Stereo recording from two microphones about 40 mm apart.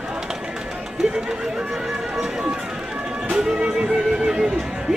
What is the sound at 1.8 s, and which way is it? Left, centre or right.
Music, centre.